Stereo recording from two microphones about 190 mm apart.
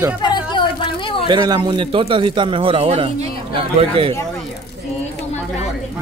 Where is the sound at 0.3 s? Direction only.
25° left (ahead or behind).